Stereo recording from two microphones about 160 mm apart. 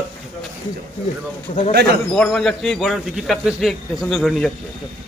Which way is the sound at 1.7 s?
90° right.